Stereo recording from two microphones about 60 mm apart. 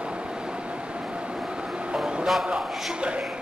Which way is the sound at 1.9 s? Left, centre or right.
Centre.